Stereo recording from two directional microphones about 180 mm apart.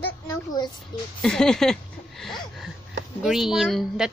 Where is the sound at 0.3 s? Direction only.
20° left (ahead or behind).